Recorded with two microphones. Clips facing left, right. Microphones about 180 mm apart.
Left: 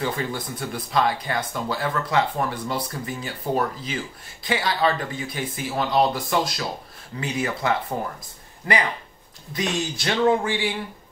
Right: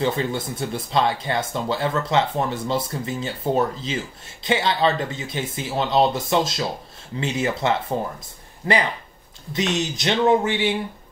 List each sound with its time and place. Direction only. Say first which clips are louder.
0.0 s speech: right 4 dB; 25° right (ahead or behind)
9.5 s speech: right 3 dB; 25° right (ahead or behind)